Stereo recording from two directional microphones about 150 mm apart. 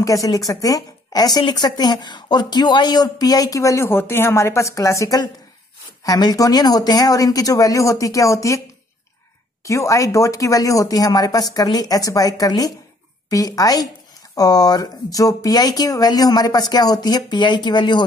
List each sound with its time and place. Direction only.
0.0 s a woman's voice: 20° left (ahead or behind)
9.7 s a woman's voice: 20° left (ahead or behind)